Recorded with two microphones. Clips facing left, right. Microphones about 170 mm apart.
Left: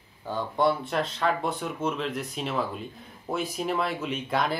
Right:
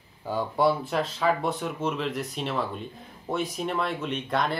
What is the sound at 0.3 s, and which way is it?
Speech, 5° right (ahead or behind).